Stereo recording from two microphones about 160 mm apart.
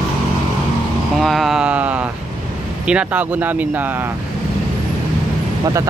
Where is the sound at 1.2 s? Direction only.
Centre (ahead or behind).